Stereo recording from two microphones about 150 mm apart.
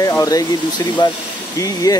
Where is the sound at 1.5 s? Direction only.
25° left (ahead or behind).